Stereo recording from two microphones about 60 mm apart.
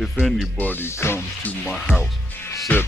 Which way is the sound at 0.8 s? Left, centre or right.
Left.